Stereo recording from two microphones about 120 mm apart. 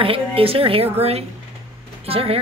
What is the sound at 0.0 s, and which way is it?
A woman's voice, 50° right (ahead or behind).